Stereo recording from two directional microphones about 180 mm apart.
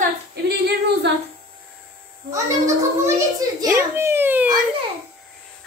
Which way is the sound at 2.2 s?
15° right (ahead or behind).